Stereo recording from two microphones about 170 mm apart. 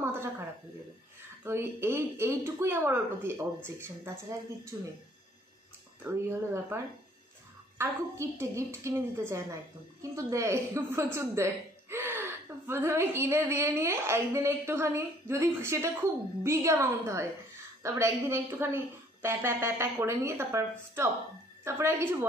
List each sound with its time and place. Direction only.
0.0 s a sound: 15° right (ahead or behind)
1.4 s speech: 15° right (ahead or behind)
6.0 s speech: 15° right (ahead or behind)